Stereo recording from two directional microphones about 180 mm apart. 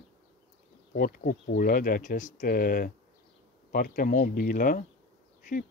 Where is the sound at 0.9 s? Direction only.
50° left (ahead or behind).